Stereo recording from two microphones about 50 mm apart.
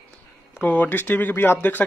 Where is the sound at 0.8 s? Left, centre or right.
Left.